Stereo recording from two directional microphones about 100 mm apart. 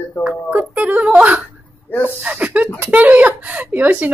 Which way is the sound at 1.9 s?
15° left (ahead or behind).